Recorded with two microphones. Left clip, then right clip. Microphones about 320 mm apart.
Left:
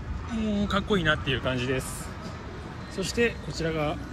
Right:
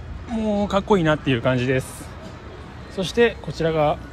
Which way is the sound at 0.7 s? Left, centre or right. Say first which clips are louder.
Right 6 dB; centre.